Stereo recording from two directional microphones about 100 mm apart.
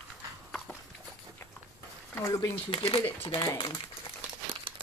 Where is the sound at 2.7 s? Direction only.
65° left (ahead or behind).